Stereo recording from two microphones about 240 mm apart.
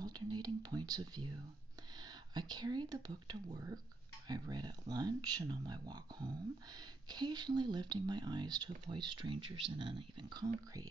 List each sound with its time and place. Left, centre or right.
0.0 s speech: centre